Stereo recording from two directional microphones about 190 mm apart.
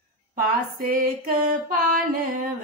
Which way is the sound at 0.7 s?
45° right (ahead or behind).